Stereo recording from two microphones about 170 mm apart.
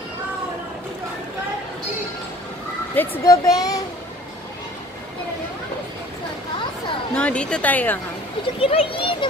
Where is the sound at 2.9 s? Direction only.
10° left (ahead or behind).